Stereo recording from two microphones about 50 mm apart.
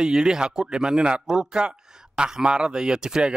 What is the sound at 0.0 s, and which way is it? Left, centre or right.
A man's voice, centre.